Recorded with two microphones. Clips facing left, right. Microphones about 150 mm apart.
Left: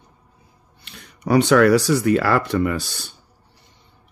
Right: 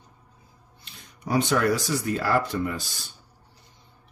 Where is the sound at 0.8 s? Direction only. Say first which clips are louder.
Left 9 dB; 70° left (ahead or behind).